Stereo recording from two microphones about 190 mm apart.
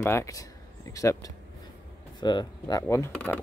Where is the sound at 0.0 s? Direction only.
15° left (ahead or behind).